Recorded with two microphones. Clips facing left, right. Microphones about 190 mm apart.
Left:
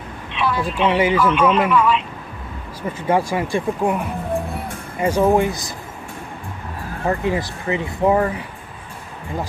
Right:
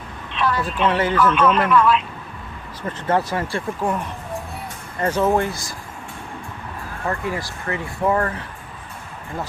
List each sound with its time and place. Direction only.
0.4 s speech: 10° left (ahead or behind)
7.1 s speech: 20° left (ahead or behind)